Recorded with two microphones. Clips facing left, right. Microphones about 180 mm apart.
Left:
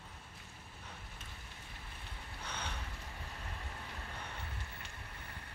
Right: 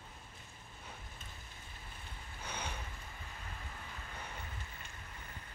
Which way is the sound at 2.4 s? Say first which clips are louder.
Right 1 dB; 10° right (ahead or behind).